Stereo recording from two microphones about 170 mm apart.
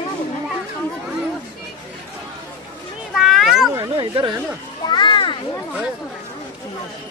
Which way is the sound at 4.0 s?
25° right (ahead or behind).